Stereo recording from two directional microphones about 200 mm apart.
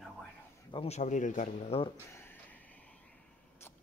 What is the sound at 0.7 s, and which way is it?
Speech, 30° left (ahead or behind).